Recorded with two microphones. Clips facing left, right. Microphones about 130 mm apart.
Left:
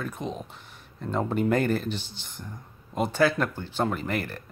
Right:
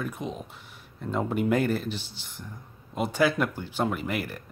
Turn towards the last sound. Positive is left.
turn(degrees=-10)  # may be behind; listen again after turning